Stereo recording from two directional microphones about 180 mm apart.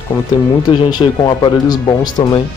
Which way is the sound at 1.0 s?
25° left (ahead or behind).